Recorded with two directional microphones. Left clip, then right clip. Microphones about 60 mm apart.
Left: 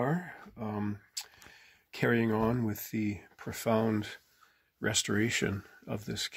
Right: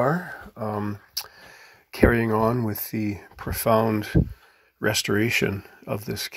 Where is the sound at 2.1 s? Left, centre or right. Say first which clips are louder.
Right 7 dB; right.